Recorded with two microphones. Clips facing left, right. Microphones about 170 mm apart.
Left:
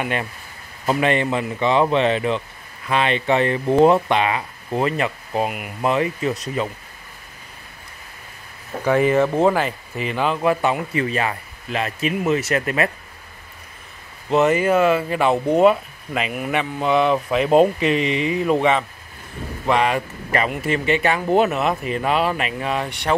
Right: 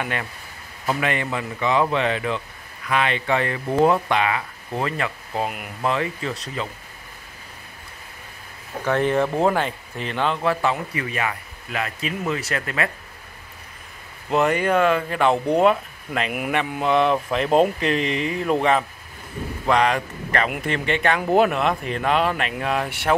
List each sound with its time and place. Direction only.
0.0 s speech: 20° left (ahead or behind)
8.8 s speech: 5° left (ahead or behind)
11.0 s speech: 30° left (ahead or behind)
14.3 s speech: centre (ahead or behind)